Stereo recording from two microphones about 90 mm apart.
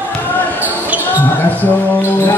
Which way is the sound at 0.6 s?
20° right (ahead or behind).